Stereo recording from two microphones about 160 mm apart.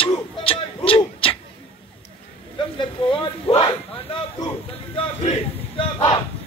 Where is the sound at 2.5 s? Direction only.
30° left (ahead or behind).